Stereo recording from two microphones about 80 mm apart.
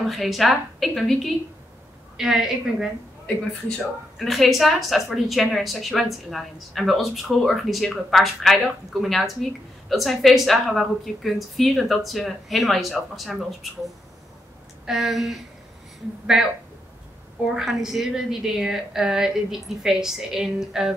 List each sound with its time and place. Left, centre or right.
0.1 s a woman's voice: centre
4.2 s a woman's voice: centre
17.6 s a woman's voice: centre